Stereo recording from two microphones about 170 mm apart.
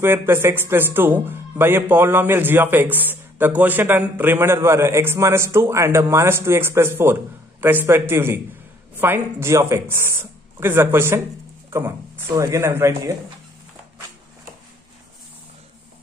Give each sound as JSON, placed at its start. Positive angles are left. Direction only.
{"t": 0.0, "sound": "speech", "side_deg": -15}
{"t": 12.4, "sound": "speech", "side_deg": -15}